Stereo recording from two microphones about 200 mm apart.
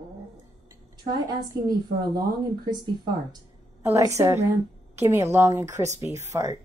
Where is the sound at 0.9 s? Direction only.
20° right (ahead or behind).